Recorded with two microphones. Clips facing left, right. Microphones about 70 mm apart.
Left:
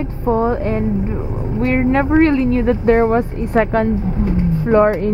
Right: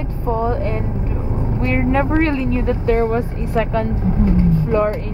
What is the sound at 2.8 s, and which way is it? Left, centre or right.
Speech, left.